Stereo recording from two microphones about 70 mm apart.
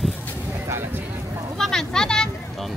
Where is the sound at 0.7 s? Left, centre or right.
Right.